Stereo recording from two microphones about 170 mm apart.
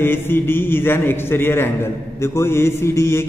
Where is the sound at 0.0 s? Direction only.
15° left (ahead or behind).